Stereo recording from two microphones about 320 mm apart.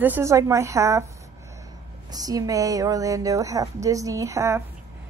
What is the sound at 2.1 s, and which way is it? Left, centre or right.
A woman's voice, centre.